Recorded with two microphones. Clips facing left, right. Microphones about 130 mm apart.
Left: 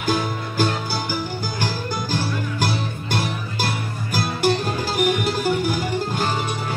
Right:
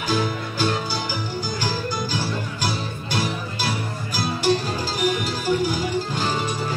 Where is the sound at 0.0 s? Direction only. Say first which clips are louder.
Left 1 dB; 50° left (ahead or behind).